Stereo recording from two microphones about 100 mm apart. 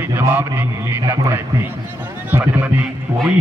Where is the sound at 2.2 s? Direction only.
15° right (ahead or behind).